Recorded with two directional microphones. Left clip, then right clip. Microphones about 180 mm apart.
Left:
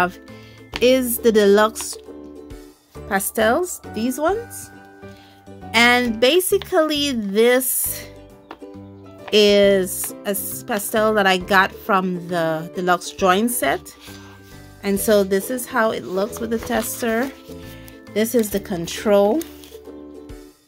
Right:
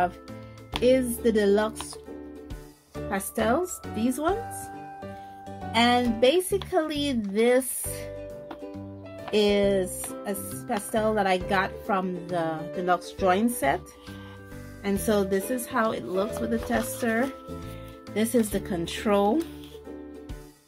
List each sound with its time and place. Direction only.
0.8 s a woman's voice: 50° left (ahead or behind)
3.1 s speech: 40° left (ahead or behind)
5.8 s a woman's voice: 55° left (ahead or behind)
9.3 s a woman's voice: 50° left (ahead or behind)
10.9 s a woman's voice: 50° left (ahead or behind)
14.8 s speech: 40° left (ahead or behind)